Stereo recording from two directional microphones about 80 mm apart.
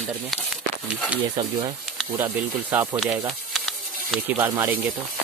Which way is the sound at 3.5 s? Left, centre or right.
Centre.